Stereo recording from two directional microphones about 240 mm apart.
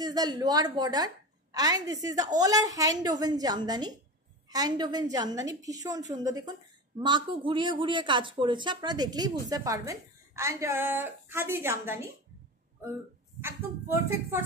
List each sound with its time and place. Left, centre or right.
0.0 s speech: centre
13.4 s speech: centre